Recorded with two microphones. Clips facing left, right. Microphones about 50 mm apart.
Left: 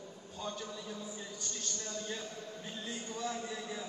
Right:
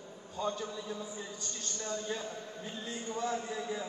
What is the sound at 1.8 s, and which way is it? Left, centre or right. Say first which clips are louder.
A man's voice: right 6 dB; right.